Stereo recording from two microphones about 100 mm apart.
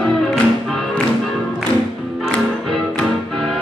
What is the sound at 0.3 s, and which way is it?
Music, 5° left (ahead or behind).